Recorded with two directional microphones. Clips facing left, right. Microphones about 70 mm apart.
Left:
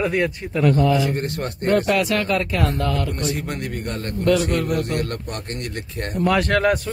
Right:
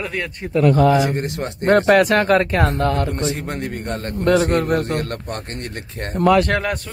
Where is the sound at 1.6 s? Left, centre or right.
Right.